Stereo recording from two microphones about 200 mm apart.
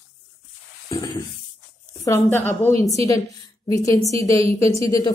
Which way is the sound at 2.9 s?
15° left (ahead or behind).